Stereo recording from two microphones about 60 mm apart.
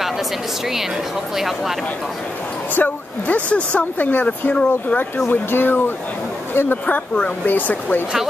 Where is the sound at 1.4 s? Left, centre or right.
Centre.